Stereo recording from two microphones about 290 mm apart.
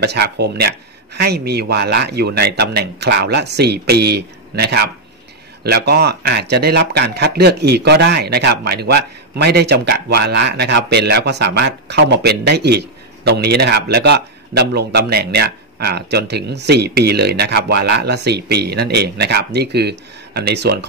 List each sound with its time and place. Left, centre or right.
0.0 s speech: right